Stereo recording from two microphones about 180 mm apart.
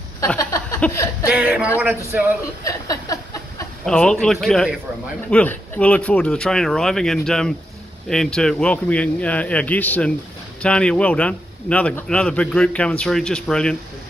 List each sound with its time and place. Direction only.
0.2 s a man's voice: 15° left (ahead or behind)
1.3 s speech: 10° right (ahead or behind)
2.6 s a sound: 20° left (ahead or behind)
3.8 s a man's voice: 5° left (ahead or behind)